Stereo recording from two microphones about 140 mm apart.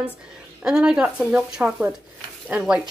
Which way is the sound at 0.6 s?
5° right (ahead or behind).